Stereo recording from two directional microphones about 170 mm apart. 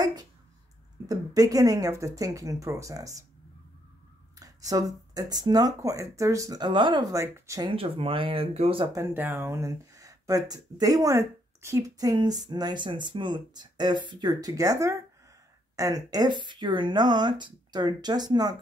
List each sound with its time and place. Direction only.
0.0 s a sound: 25° right (ahead or behind)
1.0 s speech: 20° right (ahead or behind)
4.4 s speech: 20° right (ahead or behind)
7.7 s speech: 35° right (ahead or behind)
8.9 s speech: 15° right (ahead or behind)